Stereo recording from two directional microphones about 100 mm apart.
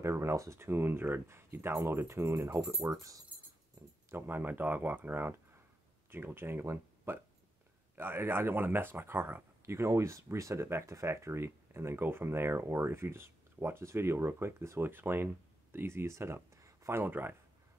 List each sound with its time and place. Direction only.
0.0 s speech: 30° right (ahead or behind)
3.8 s a sound: 30° right (ahead or behind)
4.1 s speech: 20° right (ahead or behind)